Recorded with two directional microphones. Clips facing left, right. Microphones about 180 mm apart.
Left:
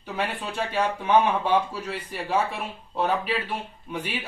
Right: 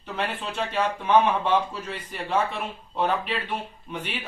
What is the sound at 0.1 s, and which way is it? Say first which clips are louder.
A man's voice: even; 10° left (ahead or behind).